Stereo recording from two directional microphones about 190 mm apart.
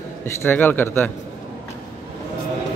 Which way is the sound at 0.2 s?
10° left (ahead or behind).